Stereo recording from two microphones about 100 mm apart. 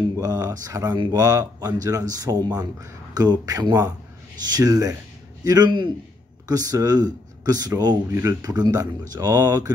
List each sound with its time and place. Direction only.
0.2 s a man's voice: 40° right (ahead or behind)